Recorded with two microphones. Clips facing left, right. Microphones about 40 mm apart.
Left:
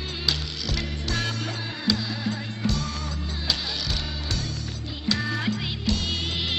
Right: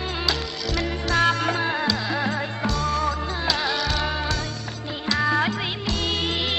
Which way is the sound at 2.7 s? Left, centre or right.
Centre.